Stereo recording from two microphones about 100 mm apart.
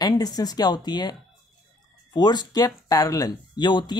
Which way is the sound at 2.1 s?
45° left (ahead or behind).